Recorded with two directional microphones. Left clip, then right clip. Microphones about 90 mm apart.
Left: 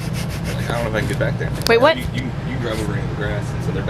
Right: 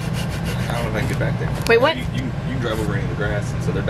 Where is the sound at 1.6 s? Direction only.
20° left (ahead or behind).